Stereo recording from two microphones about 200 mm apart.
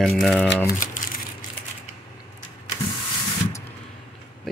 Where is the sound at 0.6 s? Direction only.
40° left (ahead or behind).